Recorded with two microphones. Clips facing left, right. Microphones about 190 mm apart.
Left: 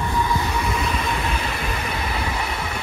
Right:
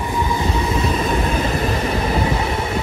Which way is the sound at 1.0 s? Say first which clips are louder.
Right 6 dB; 45° right (ahead or behind).